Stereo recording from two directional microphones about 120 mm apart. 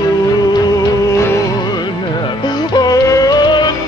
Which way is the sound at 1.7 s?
40° left (ahead or behind).